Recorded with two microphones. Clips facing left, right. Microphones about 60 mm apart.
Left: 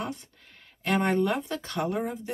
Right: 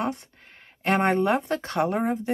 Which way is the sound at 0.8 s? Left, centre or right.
Right.